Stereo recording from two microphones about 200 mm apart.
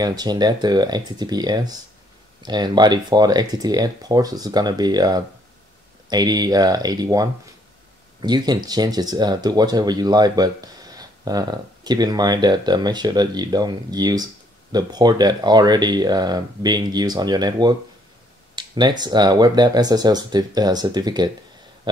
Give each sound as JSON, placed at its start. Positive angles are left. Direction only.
{"t": 0.0, "sound": "speech", "side_deg": -20}